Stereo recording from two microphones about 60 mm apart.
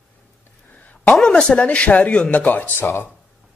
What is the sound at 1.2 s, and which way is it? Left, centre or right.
A man's voice, centre.